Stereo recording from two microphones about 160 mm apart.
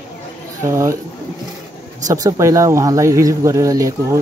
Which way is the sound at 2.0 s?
20° right (ahead or behind).